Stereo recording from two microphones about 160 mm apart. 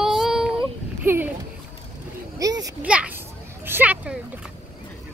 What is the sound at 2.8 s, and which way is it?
Children playing, 10° right (ahead or behind).